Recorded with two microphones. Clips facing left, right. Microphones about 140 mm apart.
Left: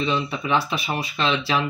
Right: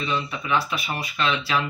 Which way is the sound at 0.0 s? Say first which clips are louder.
Left 3 dB; 25° left (ahead or behind).